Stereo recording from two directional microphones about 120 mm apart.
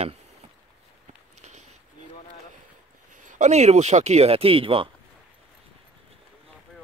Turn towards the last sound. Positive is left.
turn(degrees=-50)  # may be behind; listen again after turning